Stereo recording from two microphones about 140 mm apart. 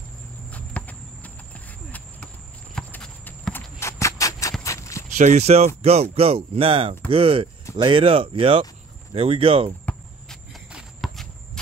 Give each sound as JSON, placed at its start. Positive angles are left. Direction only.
{"t": 0.5, "sound": "a sound", "side_deg": 10}
{"t": 2.7, "sound": "clip-clop", "side_deg": 10}
{"t": 3.8, "sound": "a sound", "side_deg": 20}
{"t": 4.6, "sound": "walk", "side_deg": 20}
{"t": 5.1, "sound": "speech", "side_deg": -60}
{"t": 9.8, "sound": "walk", "side_deg": 5}